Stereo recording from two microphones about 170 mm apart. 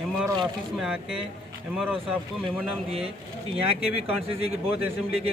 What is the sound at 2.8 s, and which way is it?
Speech, 35° right (ahead or behind).